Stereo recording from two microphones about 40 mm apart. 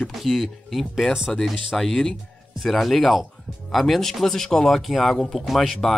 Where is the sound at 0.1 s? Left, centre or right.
Centre.